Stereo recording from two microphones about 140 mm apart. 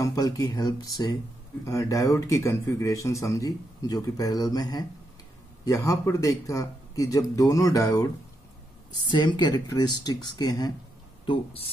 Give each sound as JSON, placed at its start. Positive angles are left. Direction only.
{"t": 0.0, "sound": "speech", "side_deg": 25}
{"t": 9.1, "sound": "speech", "side_deg": 35}
{"t": 11.2, "sound": "speech", "side_deg": 40}